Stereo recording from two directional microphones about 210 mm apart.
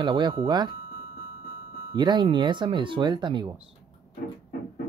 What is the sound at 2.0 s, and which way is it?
Speech, 20° right (ahead or behind).